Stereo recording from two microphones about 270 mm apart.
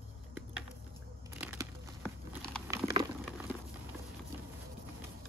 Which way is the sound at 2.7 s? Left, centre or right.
Centre.